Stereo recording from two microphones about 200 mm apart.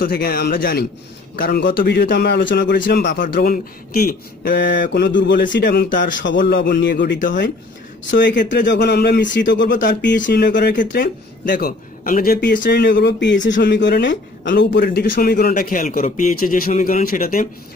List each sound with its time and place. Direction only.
0.0 s speech: 50° left (ahead or behind)
3.2 s speech: 45° left (ahead or behind)
6.2 s speech: 65° left (ahead or behind)
6.5 s speech: 45° left (ahead or behind)
6.8 s speech: 60° left (ahead or behind); by 17.5 s 45° left (ahead or behind)